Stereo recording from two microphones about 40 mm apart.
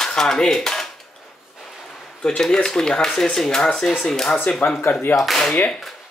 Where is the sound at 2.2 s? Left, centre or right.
Centre.